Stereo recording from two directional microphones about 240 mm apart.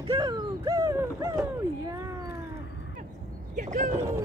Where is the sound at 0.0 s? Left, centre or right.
Centre.